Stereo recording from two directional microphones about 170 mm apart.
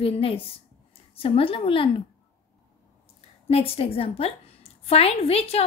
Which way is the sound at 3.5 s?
35° left (ahead or behind).